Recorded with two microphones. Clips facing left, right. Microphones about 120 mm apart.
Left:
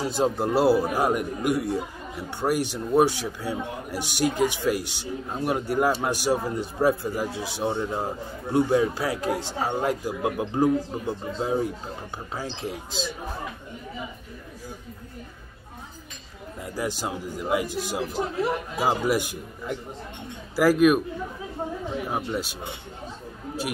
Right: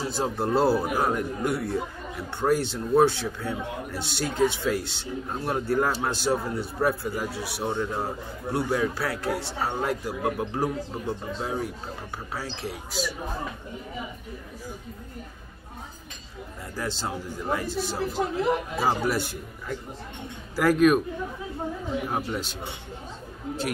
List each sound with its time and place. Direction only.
0.0 s speech: 15° left (ahead or behind)
16.7 s a man's voice: 15° left (ahead or behind)
22.1 s speech: 10° left (ahead or behind)